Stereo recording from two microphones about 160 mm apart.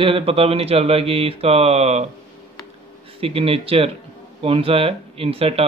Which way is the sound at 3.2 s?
35° right (ahead or behind).